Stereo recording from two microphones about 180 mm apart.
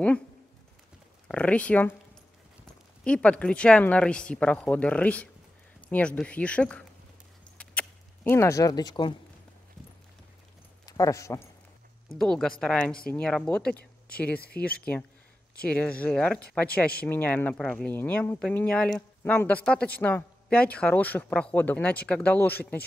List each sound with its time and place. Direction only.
1.3 s speech: 5° left (ahead or behind)
3.0 s speech: 5° left (ahead or behind)
7.5 s a sound: 10° left (ahead or behind)
10.9 s speech: 20° left (ahead or behind)
12.2 s speech: 5° left (ahead or behind)
15.6 s speech: 5° left (ahead or behind)